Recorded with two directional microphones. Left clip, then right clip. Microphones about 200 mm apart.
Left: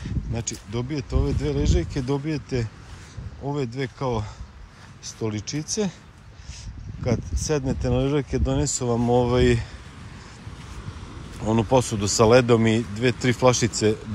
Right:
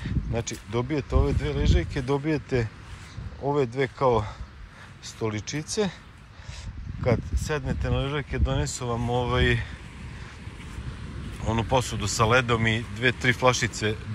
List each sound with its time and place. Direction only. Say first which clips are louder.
0.0 s speech: right 1 dB; 10° left (ahead or behind)
7.0 s speech: right 1 dB; 20° left (ahead or behind)
11.4 s speech: left 4 dB; 25° left (ahead or behind)